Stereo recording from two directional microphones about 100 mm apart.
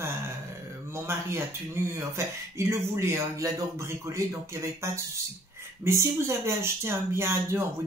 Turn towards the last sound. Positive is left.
turn(degrees=-25)  # may be behind; listen again after turning